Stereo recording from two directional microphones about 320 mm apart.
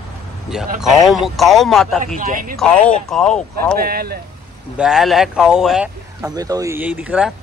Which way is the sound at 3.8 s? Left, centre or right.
Right.